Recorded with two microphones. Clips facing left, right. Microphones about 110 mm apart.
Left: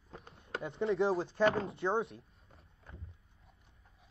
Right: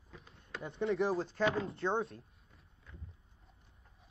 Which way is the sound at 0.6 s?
20° left (ahead or behind).